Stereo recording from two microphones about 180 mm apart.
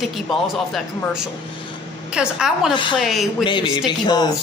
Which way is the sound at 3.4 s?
25° left (ahead or behind).